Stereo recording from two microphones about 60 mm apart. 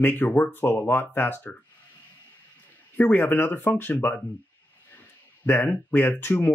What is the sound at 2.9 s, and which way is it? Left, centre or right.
Speech, left.